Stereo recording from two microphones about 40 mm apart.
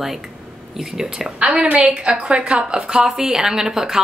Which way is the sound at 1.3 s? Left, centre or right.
Right.